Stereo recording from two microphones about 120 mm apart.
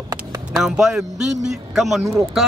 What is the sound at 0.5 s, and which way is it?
A man's voice, 5° right (ahead or behind).